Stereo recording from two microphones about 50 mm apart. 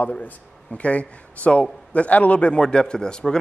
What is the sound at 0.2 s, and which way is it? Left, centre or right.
Speech, left.